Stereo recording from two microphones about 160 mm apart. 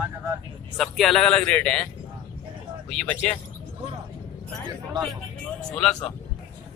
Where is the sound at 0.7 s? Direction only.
Centre (ahead or behind).